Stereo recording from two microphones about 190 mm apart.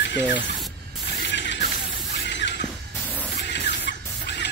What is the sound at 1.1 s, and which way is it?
Mechanisms, 70° left (ahead or behind).